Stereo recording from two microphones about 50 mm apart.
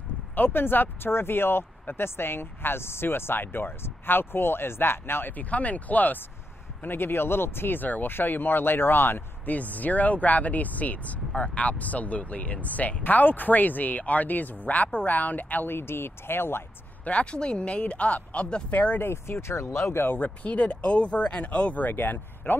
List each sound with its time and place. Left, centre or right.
0.4 s speech: left
5.4 s speech: left
6.8 s speech: left
9.6 s speech: left
15.7 s speech: left
17.0 s speech: left
19.0 s speech: left
20.1 s speech: left